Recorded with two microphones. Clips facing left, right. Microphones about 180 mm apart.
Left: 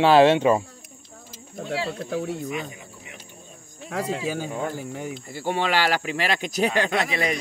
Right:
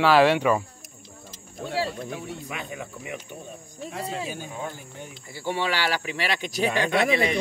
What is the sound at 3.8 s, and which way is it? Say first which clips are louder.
Speech: left 5 dB; 85° left.